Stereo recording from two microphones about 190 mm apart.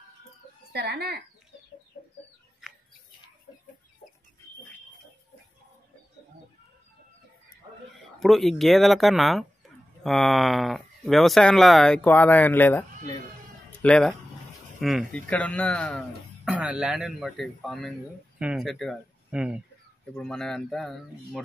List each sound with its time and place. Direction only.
0.7 s speech: 60° right (ahead or behind)
8.2 s speech: centre (ahead or behind)
13.7 s cat: 5° left (ahead or behind)
14.8 s speech: centre (ahead or behind)
16.4 s speech: 5° right (ahead or behind)